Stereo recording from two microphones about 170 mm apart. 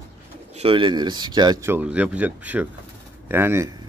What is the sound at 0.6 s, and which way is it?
Speech, 30° right (ahead or behind).